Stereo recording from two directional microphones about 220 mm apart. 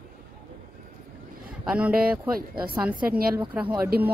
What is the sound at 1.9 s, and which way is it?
Speech, 40° right (ahead or behind).